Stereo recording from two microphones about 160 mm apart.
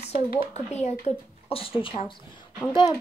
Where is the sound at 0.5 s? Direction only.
45° left (ahead or behind).